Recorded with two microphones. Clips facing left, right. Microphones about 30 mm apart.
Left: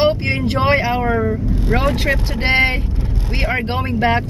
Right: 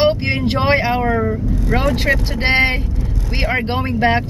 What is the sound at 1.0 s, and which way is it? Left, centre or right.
Vehicle, centre.